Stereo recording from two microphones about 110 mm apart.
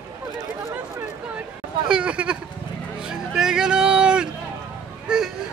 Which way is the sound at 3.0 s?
5° right (ahead or behind).